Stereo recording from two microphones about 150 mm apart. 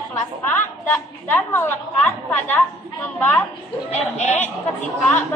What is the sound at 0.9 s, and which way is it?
A woman's voice, 15° left (ahead or behind).